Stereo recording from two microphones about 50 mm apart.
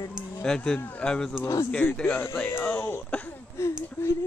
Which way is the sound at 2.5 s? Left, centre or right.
Left.